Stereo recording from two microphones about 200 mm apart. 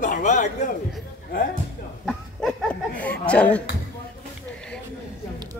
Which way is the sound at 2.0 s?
5° left (ahead or behind).